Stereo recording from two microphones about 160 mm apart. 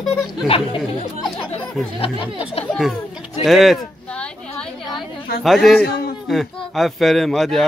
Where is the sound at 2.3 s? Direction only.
35° left (ahead or behind).